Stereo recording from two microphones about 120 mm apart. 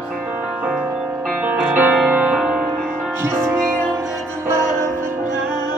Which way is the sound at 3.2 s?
20° right (ahead or behind).